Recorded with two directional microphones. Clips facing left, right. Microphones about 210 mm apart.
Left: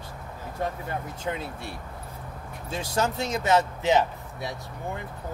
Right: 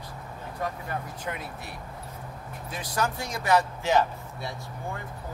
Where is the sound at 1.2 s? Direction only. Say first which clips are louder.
Left 4 dB; 25° left (ahead or behind).